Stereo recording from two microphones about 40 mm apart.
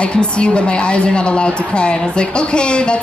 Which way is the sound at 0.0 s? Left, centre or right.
Left.